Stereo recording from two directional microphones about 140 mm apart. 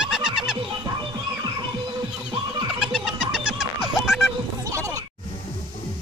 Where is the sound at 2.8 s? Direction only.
5° right (ahead or behind).